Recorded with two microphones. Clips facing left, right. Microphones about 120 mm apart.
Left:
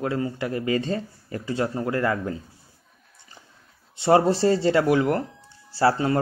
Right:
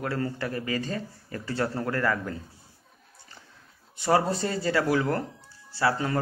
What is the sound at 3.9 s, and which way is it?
Speech, 25° left (ahead or behind).